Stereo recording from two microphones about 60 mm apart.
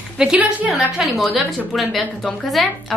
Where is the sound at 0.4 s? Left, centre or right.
Right.